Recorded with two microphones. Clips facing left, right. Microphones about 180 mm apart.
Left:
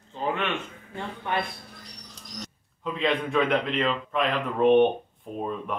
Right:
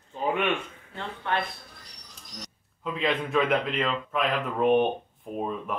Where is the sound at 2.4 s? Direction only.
Centre (ahead or behind).